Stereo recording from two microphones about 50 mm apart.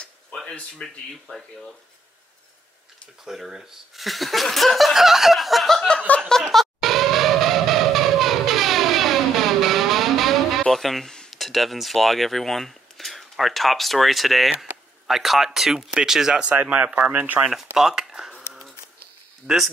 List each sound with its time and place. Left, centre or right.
0.8 s speech: centre
3.3 s speech: centre
6.5 s music: centre
14.6 s speech: centre
16.6 s speech: right
17.5 s speech: centre
19.5 s speech: centre